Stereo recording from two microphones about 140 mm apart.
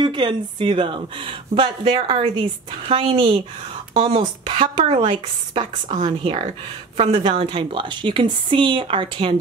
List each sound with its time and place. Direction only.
0.0 s speech: 35° right (ahead or behind)